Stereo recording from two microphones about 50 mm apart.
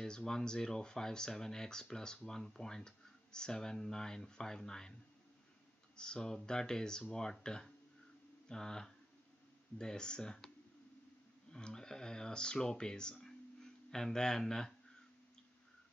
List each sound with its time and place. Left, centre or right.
0.0 s speech: centre
5.9 s speech: centre
11.5 s speech: centre